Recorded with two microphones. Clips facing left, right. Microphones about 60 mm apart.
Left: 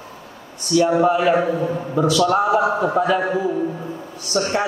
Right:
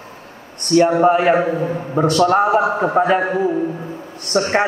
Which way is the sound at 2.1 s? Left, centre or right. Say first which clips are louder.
Right 3 dB; right.